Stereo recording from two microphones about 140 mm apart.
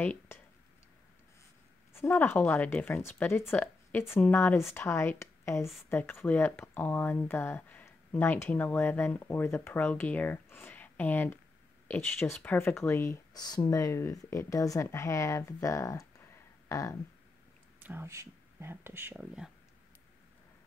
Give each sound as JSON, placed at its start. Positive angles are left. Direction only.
{"t": 0.0, "sound": "speech", "side_deg": 15}
{"t": 2.0, "sound": "speech", "side_deg": 15}
{"t": 16.6, "sound": "a sound", "side_deg": 25}
{"t": 17.7, "sound": "speech", "side_deg": -15}